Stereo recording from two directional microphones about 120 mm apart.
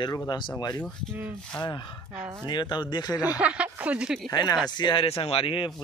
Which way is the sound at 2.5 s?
40° left (ahead or behind).